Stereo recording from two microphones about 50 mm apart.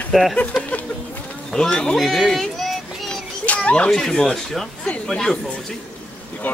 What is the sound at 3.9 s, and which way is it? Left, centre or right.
Speech, centre.